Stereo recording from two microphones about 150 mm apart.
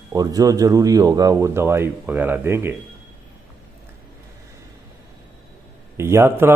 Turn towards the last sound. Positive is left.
turn(degrees=-15)  # may be behind; listen again after turning